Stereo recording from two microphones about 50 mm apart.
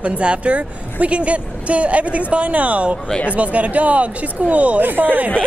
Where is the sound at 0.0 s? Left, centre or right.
Right.